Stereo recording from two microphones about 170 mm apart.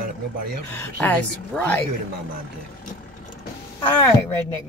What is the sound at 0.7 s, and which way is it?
Speech, 10° left (ahead or behind).